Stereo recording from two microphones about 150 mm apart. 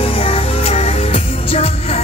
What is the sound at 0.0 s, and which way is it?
Music, 40° left (ahead or behind).